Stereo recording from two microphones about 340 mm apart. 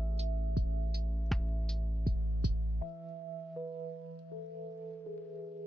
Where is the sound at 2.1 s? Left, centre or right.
Right.